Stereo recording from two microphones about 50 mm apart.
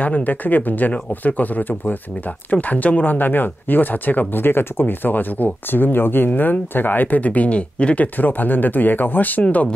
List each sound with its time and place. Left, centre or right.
0.0 s speech: left